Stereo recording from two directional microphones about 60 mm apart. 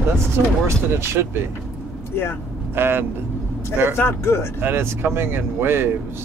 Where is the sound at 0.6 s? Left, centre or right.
Right.